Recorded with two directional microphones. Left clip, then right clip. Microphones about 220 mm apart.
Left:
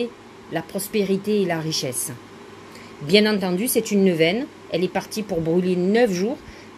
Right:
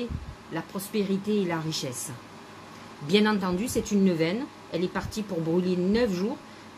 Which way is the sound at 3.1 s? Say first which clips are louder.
Left 6 dB; 10° left (ahead or behind).